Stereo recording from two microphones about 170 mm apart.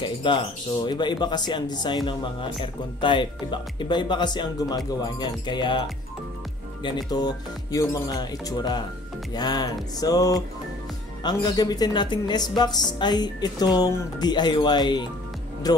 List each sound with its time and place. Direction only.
0.0 s speech: 30° left (ahead or behind)